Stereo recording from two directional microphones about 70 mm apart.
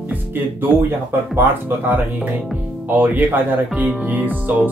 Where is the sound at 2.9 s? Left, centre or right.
Right.